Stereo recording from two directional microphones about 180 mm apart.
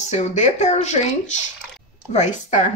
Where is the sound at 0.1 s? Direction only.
40° left (ahead or behind).